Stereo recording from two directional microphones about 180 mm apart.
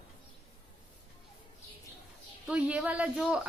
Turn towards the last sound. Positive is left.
turn(degrees=-5)  # may be behind; listen again after turning